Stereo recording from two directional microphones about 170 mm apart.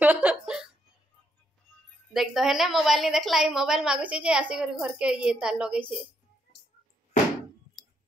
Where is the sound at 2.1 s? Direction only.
Centre (ahead or behind).